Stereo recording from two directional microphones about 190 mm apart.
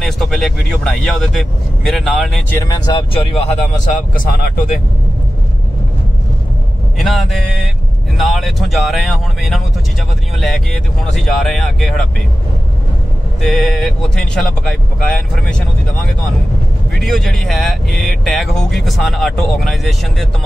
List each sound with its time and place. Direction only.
0.0 s speech: centre (ahead or behind)
2.6 s speech: 20° left (ahead or behind)
3.8 s speech: 45° left (ahead or behind)
7.0 s speech: centre (ahead or behind)
13.4 s speech: centre (ahead or behind)